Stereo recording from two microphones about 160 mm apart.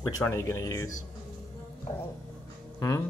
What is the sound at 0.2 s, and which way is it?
Child singing, 20° left (ahead or behind).